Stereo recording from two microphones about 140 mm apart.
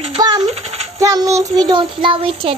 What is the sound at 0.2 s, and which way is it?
Music, 30° right (ahead or behind).